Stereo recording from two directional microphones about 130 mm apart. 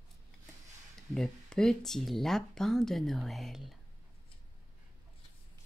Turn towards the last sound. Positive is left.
turn(degrees=0)  # may be behind; listen again after turning